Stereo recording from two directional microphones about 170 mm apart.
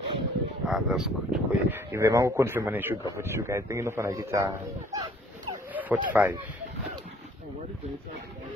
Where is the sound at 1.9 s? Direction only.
20° right (ahead or behind).